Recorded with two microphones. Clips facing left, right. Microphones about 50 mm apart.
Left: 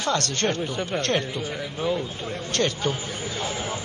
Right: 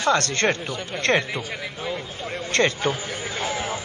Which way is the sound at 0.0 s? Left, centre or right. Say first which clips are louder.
Right 4 dB; right.